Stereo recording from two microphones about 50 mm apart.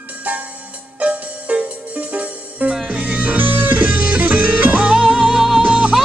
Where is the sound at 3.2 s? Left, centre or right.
Right.